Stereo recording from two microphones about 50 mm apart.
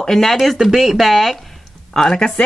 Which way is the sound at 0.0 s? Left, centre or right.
Centre.